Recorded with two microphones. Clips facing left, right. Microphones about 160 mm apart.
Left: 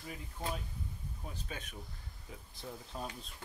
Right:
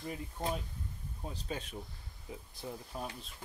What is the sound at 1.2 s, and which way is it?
Speech, 30° right (ahead or behind).